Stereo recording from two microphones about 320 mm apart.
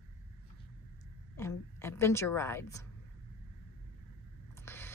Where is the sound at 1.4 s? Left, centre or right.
Centre.